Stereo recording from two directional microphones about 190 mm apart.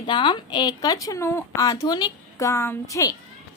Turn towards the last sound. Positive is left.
turn(degrees=15)  # may be behind; listen again after turning